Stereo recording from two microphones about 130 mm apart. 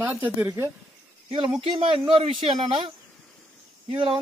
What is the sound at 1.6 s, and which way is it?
Speech, 45° right (ahead or behind).